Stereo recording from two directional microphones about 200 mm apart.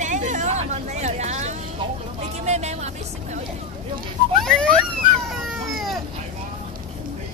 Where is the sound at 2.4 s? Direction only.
35° right (ahead or behind).